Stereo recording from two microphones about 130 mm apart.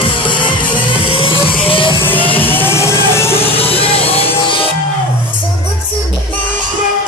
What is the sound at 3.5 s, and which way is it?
Music, 45° left (ahead or behind).